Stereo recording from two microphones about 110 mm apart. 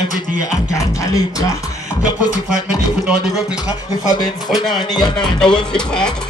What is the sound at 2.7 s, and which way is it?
Speech, 10° right (ahead or behind).